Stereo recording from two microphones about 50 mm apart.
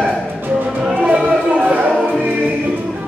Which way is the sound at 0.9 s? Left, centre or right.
Right.